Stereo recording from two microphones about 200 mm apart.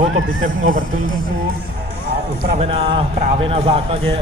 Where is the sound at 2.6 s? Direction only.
30° right (ahead or behind).